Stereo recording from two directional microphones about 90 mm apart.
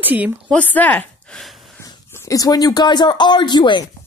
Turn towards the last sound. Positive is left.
turn(degrees=60)  # may be behind; listen again after turning